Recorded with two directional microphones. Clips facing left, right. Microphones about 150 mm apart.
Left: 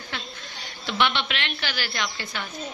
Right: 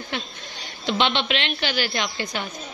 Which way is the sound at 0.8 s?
20° right (ahead or behind).